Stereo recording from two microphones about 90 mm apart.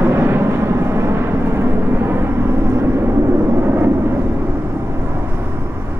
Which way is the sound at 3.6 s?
25° right (ahead or behind).